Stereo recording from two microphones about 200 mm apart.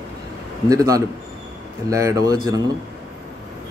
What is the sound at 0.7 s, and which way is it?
Speech, 15° right (ahead or behind).